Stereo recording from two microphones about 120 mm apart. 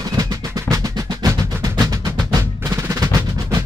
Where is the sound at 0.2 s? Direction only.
30° right (ahead or behind).